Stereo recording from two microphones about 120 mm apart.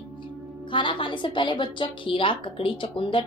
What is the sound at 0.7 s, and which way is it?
A woman's voice, 40° left (ahead or behind).